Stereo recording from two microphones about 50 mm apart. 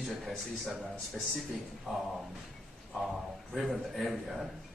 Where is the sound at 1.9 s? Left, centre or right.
Centre.